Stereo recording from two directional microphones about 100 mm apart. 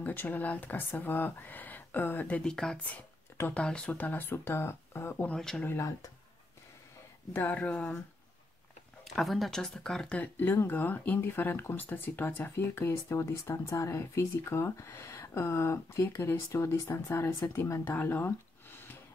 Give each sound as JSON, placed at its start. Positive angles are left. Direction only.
{"t": 0.0, "sound": "speech", "side_deg": 20}
{"t": 3.3, "sound": "speech", "side_deg": 20}
{"t": 3.6, "sound": "speech", "side_deg": 10}
{"t": 5.4, "sound": "speech", "side_deg": 5}
{"t": 5.7, "sound": "speech", "side_deg": 30}
{"t": 7.3, "sound": "speech", "side_deg": 15}
{"t": 9.0, "sound": "speech", "side_deg": 0}
{"t": 17.9, "sound": "a sound", "side_deg": 20}